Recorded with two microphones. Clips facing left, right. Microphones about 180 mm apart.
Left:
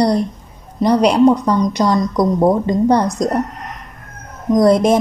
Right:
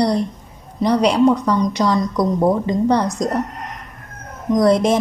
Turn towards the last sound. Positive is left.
turn(degrees=45)  # may be behind; listen again after turning